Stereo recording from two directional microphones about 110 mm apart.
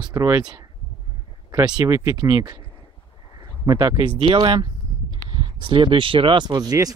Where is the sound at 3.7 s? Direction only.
35° right (ahead or behind).